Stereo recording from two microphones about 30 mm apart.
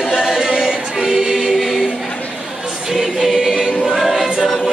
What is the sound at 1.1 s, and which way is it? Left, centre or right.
Choir, right.